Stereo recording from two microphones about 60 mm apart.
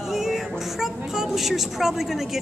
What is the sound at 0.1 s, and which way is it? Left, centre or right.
A woman's voice, centre.